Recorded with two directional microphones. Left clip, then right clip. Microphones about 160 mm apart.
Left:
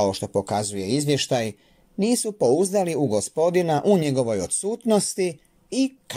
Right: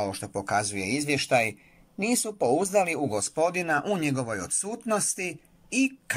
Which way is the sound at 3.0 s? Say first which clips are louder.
Left 4 dB; 30° left (ahead or behind).